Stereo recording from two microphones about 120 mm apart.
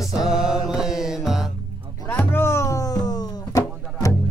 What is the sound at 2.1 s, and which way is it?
Music, 15° left (ahead or behind).